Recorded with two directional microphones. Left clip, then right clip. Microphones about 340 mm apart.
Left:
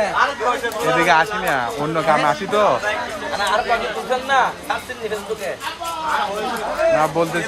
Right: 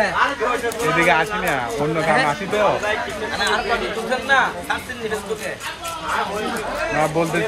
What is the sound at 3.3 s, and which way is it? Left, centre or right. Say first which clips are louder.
Speech: left 2 dB; left.